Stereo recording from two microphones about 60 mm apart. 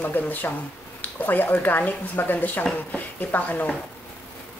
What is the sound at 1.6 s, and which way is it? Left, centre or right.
A woman's voice, left.